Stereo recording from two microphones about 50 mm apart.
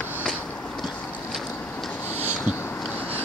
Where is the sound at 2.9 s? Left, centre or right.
Left.